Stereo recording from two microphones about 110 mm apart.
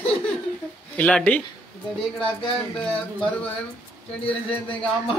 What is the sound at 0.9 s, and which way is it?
Speech, 10° left (ahead or behind).